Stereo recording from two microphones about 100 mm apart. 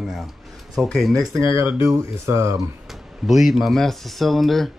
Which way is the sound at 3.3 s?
Centre (ahead or behind).